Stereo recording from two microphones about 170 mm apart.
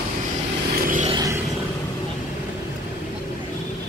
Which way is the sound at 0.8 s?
50° right (ahead or behind).